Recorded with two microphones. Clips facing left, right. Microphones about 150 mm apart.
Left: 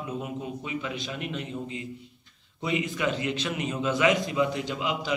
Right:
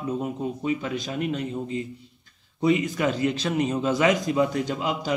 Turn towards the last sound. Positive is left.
turn(degrees=-45)  # may be behind; listen again after turning